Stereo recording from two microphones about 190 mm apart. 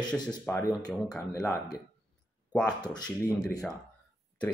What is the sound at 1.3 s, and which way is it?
Speech, 15° left (ahead or behind).